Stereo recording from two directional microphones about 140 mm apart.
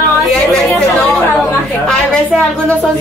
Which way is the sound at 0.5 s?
5° left (ahead or behind).